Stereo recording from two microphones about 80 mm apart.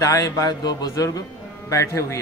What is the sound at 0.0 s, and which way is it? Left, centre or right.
A man's voice, left.